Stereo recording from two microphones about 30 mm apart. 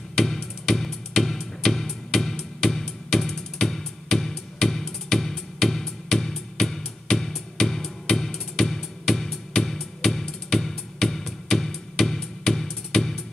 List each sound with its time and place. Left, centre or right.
0.1 s music: centre